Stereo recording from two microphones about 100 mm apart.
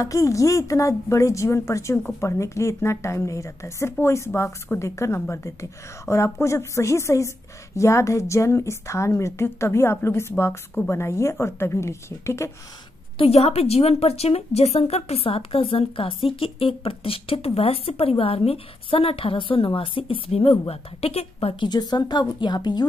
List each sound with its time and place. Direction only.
0.0 s a woman's voice: 35° left (ahead or behind)
13.2 s a woman's voice: 80° left
21.5 s a woman's voice: 45° left (ahead or behind)